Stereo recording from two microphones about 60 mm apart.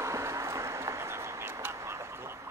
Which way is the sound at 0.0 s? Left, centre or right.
Right.